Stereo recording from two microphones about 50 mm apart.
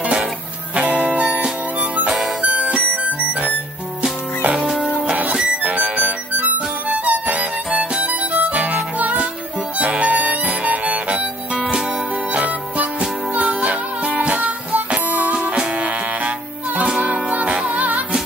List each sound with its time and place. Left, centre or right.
0.0 s music: right
2.4 s music: right
5.6 s harmonica: right
6.9 s music: right
9.8 s harmonica: right
12.3 s music: right